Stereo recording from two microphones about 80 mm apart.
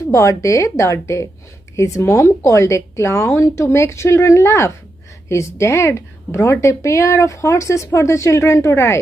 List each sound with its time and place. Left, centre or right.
0.1 s a woman's voice: left